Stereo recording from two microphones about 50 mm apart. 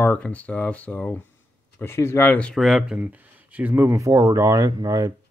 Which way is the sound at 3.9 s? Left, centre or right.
Right.